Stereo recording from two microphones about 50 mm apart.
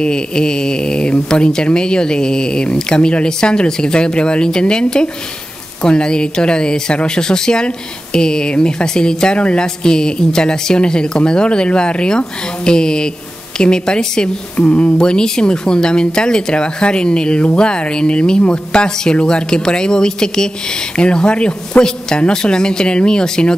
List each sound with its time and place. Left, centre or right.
0.0 s speech: centre
15.0 s speech: centre